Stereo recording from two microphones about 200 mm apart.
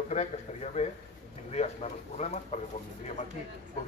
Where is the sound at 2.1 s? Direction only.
35° left (ahead or behind).